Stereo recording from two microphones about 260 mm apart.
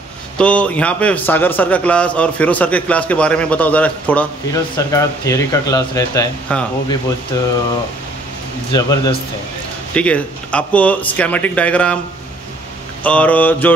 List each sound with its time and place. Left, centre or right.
0.4 s a man's voice: centre
8.7 s speech: centre
9.9 s a man's voice: centre
13.0 s a man's voice: centre